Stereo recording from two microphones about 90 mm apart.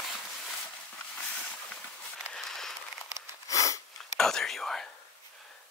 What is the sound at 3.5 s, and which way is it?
Sniff, 35° left (ahead or behind).